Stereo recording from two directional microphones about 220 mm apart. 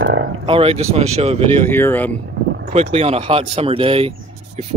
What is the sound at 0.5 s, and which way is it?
Speech, 25° right (ahead or behind).